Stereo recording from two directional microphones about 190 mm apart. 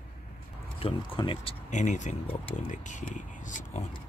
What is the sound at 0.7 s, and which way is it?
Speech, 30° left (ahead or behind).